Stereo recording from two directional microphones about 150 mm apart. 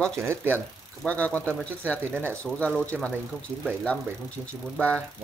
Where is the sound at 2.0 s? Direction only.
15° right (ahead or behind).